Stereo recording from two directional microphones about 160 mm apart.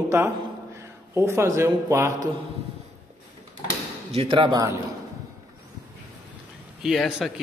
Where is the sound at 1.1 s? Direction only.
15° right (ahead or behind).